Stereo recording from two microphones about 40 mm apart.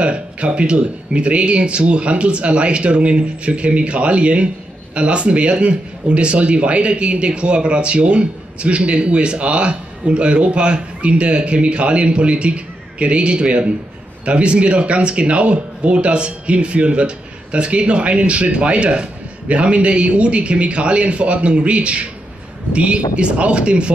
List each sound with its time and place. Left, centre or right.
0.0 s a man's voice: right